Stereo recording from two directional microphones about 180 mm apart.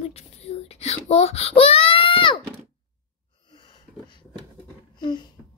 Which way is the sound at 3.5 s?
25° left (ahead or behind).